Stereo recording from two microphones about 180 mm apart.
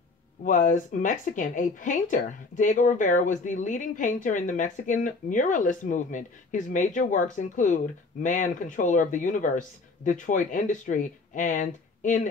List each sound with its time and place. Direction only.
0.4 s speech: 50° left (ahead or behind)